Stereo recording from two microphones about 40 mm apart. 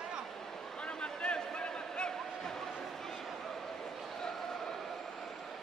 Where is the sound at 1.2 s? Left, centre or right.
Left.